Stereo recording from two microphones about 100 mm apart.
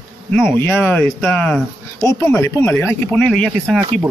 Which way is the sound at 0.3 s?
15° left (ahead or behind).